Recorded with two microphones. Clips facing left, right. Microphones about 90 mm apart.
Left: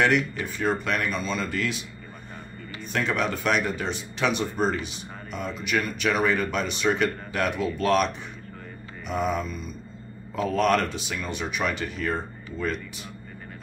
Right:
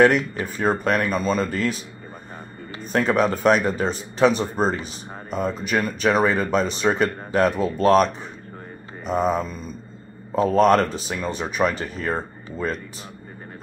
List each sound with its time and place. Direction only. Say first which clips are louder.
0.0 s speech: right 6 dB; 40° right (ahead or behind)
2.8 s speech: right 7 dB; 40° right (ahead or behind)